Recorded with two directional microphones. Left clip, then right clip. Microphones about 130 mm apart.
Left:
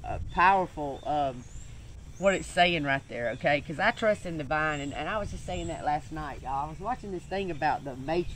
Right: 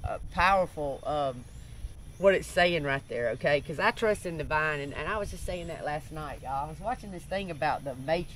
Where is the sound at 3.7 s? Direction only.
45° right (ahead or behind).